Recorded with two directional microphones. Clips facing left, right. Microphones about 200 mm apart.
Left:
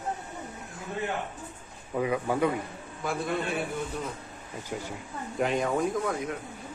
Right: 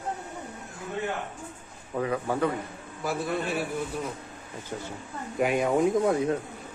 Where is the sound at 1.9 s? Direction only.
10° left (ahead or behind).